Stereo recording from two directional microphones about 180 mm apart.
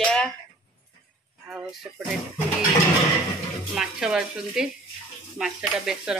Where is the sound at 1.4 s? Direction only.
5° right (ahead or behind).